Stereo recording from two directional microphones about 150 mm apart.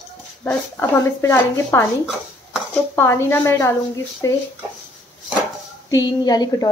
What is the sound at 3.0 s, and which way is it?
A woman's voice, 15° left (ahead or behind).